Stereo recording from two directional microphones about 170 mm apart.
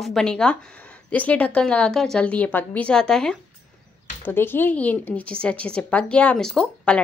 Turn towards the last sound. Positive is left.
turn(degrees=5)  # may be behind; listen again after turning